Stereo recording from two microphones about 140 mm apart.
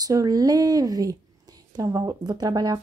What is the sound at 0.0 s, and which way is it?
A woman's voice, 25° right (ahead or behind).